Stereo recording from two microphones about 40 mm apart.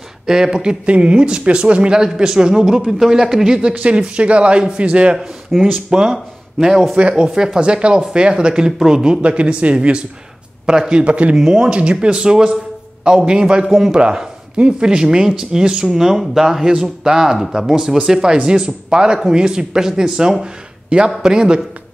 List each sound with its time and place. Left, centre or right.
0.3 s speech: centre
3.7 s speech: right
5.5 s speech: centre
5.9 s speech: centre
11.3 s speech: centre
11.7 s speech: right
13.7 s speech: centre
14.6 s speech: right
16.7 s speech: centre